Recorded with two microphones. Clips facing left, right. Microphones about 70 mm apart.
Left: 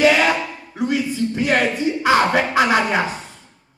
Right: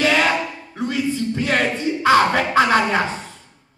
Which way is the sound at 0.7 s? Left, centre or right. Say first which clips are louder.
Left 2 dB; centre.